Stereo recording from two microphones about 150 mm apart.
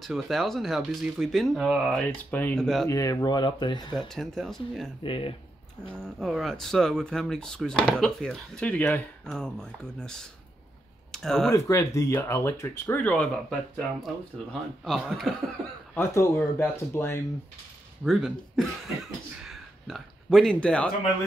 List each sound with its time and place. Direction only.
0.0 s speech: centre (ahead or behind)
2.9 s speech: 20° left (ahead or behind)
4.1 s speech: 5° left (ahead or behind)
5.0 s speech: 35° left (ahead or behind)
5.9 s speech: 5° left (ahead or behind)
11.1 s computer keyboard: centre (ahead or behind)
11.5 s speech: 20° left (ahead or behind); by 15.3 s centre (ahead or behind)
15.9 s speech: 15° left (ahead or behind)
18.0 s speech: centre (ahead or behind)